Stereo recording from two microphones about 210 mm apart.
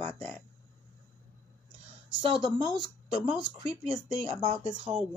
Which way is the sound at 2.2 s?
20° right (ahead or behind).